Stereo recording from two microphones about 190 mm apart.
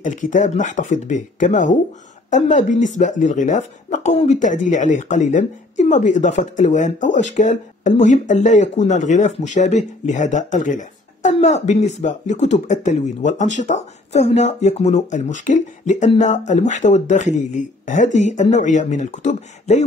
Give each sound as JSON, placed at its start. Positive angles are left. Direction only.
{"t": 0.0, "sound": "speech", "side_deg": 40}